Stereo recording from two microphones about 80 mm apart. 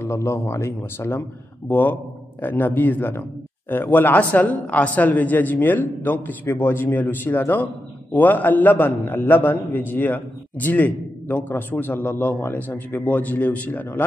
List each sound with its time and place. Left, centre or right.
0.0 s a man's voice: left